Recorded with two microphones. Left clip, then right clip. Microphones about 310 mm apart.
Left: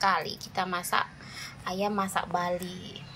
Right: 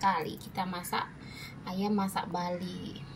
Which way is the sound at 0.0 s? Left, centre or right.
Centre.